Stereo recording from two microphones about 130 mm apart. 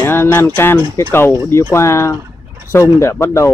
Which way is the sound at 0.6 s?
20° left (ahead or behind).